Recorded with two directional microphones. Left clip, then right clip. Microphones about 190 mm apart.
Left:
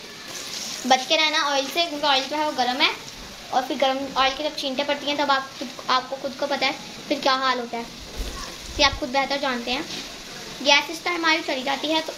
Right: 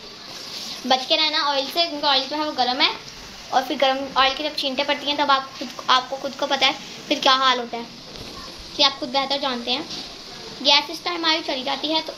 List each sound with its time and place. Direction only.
0.8 s a woman's voice: 10° right (ahead or behind)